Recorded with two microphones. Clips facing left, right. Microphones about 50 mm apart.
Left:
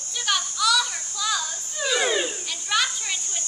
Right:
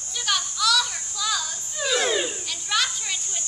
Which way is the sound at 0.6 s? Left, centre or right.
Centre.